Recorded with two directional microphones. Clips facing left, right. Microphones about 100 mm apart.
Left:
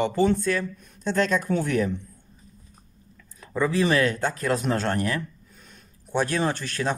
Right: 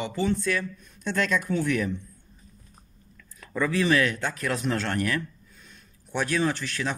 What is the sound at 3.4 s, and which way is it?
Speech, 25° left (ahead or behind).